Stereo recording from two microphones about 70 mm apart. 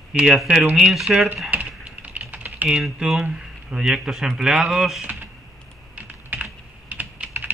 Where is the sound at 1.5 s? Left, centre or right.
Right.